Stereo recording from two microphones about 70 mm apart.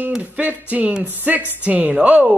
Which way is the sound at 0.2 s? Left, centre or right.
Right.